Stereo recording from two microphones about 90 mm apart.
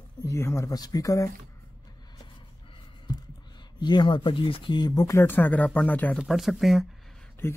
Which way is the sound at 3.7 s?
55° left (ahead or behind).